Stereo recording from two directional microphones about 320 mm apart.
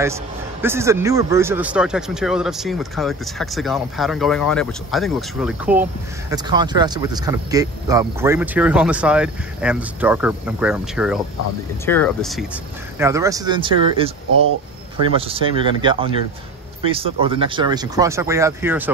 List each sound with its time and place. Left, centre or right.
0.0 s speech: centre